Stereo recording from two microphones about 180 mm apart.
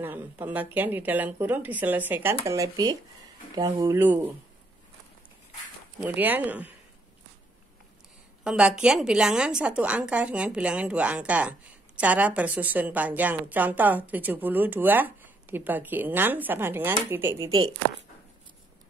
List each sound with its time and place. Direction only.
0.0 s a woman's voice: 10° right (ahead or behind)
5.9 s a woman's voice: 10° right (ahead or behind)
8.5 s a woman's voice: 5° right (ahead or behind); by 17.7 s 25° right (ahead or behind)